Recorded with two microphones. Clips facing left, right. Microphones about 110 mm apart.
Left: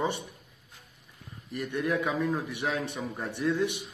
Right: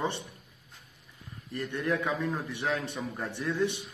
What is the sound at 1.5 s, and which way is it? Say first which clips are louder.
Speech: left 1 dB; 15° left (ahead or behind).